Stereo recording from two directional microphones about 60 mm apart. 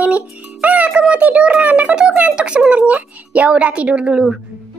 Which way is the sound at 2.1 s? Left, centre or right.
Centre.